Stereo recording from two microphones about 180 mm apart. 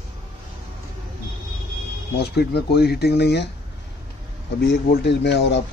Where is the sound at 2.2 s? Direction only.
65° left (ahead or behind).